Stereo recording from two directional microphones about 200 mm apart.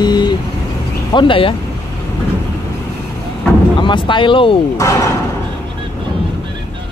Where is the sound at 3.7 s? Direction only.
25° left (ahead or behind).